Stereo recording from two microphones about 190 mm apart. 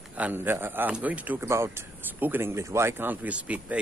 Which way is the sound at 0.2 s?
10° right (ahead or behind).